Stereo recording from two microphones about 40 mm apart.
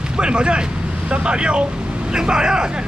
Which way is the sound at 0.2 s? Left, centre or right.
Right.